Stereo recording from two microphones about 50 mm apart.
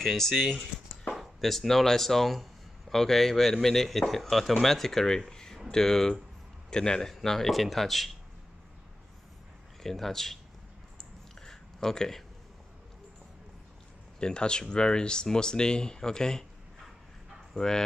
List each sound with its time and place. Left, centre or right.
1.1 s speech: centre
9.8 s speech: centre
11.0 s a sound: centre
14.2 s speech: centre
17.6 s speech: centre